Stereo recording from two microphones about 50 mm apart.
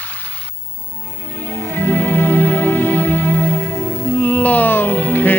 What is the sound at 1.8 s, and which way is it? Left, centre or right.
Music, left.